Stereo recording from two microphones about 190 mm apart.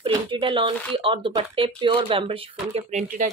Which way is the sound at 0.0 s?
30° right (ahead or behind).